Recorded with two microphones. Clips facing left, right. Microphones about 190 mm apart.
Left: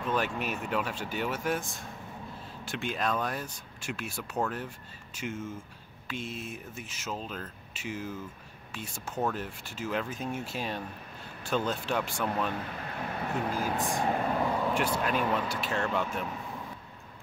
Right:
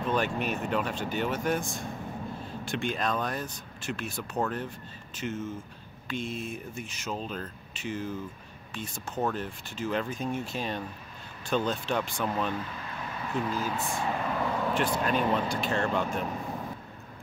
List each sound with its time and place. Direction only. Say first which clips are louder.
0.1 s speech: right 2 dB; 5° left (ahead or behind)
12.7 s vehicle: left 2 dB; 55° left (ahead or behind)
14.0 s speech: left 2 dB; 40° left (ahead or behind)
14.4 s vehicle: even; 10° left (ahead or behind)
15.3 s speech: right 3 dB; 5° left (ahead or behind)